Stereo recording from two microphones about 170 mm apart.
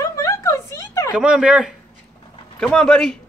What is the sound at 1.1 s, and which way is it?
Speech, 5° right (ahead or behind).